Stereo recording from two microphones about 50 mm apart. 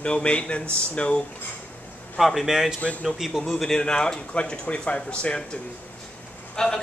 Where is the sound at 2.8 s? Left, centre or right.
Left.